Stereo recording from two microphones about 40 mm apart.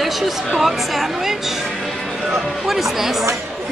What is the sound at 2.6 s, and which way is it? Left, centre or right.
Speech, centre.